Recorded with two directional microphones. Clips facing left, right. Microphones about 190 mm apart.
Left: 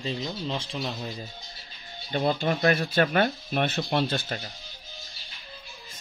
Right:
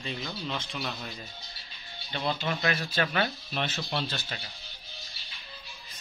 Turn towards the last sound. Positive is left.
turn(degrees=50)  # may be behind; listen again after turning